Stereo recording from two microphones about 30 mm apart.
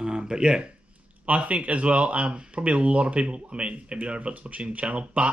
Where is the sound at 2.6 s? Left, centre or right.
Right.